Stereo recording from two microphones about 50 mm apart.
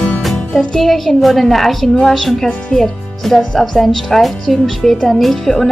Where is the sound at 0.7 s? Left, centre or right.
Centre.